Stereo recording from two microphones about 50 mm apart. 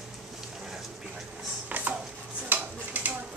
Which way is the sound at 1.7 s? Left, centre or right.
Right.